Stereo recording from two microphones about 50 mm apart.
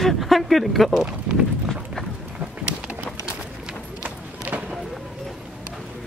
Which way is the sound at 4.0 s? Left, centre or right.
Right.